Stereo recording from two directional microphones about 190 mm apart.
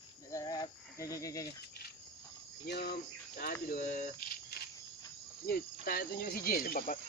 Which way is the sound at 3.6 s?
45° left (ahead or behind).